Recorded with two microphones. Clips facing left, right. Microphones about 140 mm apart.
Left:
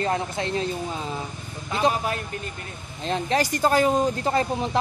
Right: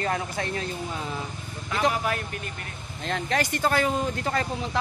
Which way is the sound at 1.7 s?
25° left (ahead or behind).